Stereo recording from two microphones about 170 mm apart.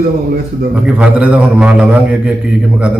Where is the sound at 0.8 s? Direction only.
5° right (ahead or behind).